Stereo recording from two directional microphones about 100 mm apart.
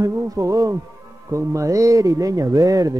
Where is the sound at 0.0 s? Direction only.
35° right (ahead or behind).